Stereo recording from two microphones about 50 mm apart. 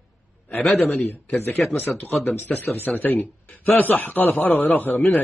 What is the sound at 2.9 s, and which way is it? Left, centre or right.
A man's voice, left.